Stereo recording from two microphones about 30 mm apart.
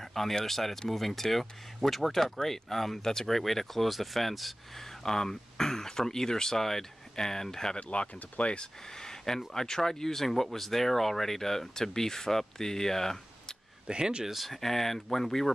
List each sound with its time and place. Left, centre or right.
0.0 s a sound: centre
0.5 s speech: centre
4.7 s speech: centre
7.7 s speech: left
8.5 s speech: centre
13.8 s speech: right
14.2 s speech: centre
14.5 s speech: centre